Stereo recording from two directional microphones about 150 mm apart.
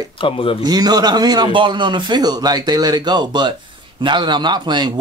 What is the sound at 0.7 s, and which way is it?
A man's voice, 25° right (ahead or behind).